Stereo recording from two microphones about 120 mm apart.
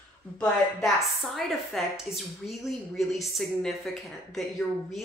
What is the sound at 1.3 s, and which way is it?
Speech, centre (ahead or behind).